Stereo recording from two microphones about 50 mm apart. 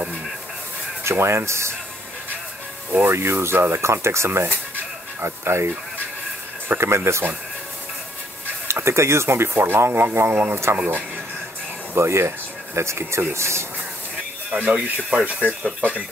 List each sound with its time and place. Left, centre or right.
1.2 s speech: right
2.9 s speech: right
6.7 s speech: right
7.1 s speech: right
8.6 s speech: right
11.9 s speech: right
14.5 s speech: right